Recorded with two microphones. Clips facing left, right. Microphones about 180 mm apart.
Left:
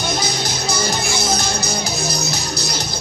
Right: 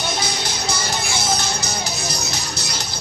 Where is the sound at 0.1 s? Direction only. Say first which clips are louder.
Left 3 dB; 40° left (ahead or behind).